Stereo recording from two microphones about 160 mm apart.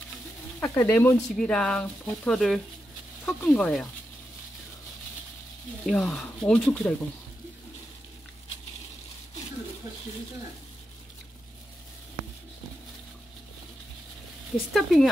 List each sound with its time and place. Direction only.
0.6 s speech: 10° left (ahead or behind)
5.9 s speech: 5° left (ahead or behind)
14.7 s speech: centre (ahead or behind)